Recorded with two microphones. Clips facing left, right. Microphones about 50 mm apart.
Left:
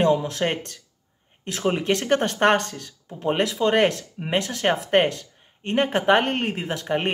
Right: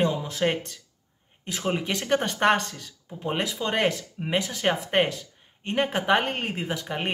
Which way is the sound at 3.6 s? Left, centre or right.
Centre.